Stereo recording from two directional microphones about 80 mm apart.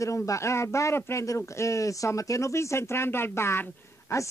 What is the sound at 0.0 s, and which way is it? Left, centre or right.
Speech, left.